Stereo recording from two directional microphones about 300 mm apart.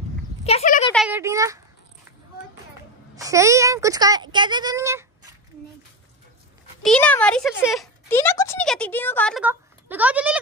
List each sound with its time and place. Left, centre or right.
0.4 s a sound: left
0.9 s speech: centre
3.2 s speech: centre
6.8 s a woman's voice: centre